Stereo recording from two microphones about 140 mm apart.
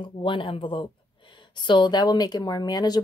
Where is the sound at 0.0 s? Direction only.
35° left (ahead or behind).